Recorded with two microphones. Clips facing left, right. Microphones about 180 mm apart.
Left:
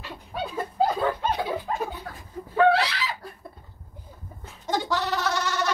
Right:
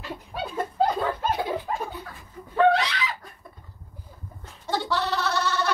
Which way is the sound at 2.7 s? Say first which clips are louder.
Left 1 dB; 35° left (ahead or behind).